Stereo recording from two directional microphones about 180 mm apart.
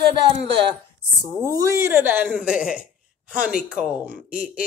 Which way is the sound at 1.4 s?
15° right (ahead or behind).